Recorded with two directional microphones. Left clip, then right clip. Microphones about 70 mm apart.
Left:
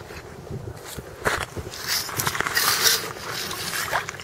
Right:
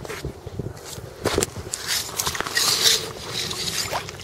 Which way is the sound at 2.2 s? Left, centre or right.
Right.